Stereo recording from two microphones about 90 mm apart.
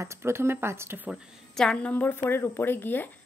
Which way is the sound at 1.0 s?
10° right (ahead or behind).